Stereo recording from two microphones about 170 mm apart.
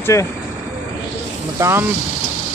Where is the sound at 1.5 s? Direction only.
15° right (ahead or behind).